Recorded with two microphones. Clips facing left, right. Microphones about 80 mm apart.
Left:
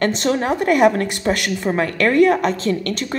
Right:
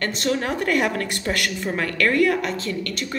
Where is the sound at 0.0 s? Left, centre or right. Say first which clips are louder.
Left 5 dB; left.